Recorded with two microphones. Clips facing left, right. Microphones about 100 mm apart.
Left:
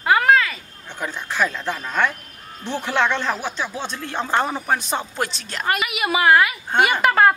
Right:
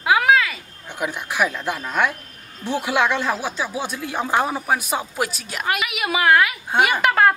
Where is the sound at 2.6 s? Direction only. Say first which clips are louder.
Right 1 dB; 10° right (ahead or behind).